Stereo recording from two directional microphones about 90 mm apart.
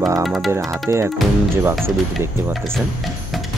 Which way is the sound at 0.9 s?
30° right (ahead or behind).